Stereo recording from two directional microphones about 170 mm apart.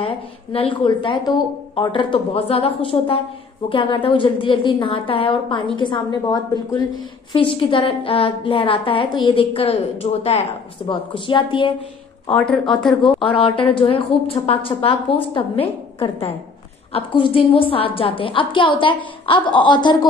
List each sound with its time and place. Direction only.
0.0 s a woman's voice: 30° left (ahead or behind)
12.3 s a woman's voice: 5° left (ahead or behind)
13.0 s a woman's voice: 30° left (ahead or behind)